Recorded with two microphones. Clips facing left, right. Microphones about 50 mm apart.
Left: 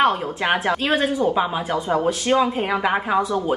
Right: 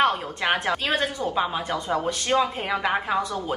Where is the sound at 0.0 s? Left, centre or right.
Centre.